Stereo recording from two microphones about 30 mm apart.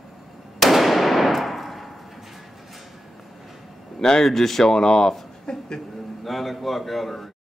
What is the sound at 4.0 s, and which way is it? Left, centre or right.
Speech, left.